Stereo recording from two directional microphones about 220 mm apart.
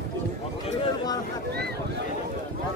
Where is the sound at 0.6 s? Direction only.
20° left (ahead or behind).